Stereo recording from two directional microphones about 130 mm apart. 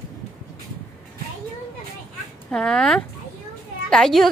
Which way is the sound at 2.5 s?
5° left (ahead or behind).